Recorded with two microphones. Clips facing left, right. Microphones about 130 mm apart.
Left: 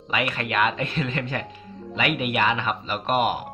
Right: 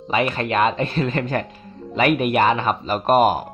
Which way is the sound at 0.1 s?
35° right (ahead or behind).